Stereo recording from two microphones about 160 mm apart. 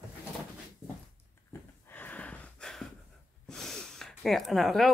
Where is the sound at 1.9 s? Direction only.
10° left (ahead or behind).